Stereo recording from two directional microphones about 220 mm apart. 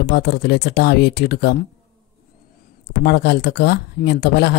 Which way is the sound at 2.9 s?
50° left (ahead or behind).